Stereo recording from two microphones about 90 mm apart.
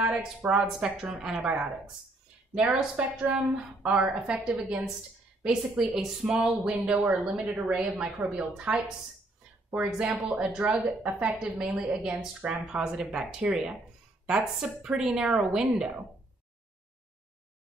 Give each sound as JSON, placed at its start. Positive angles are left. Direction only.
{"t": 0.0, "sound": "a woman's voice", "side_deg": -10}
{"t": 2.5, "sound": "a woman's voice", "side_deg": -10}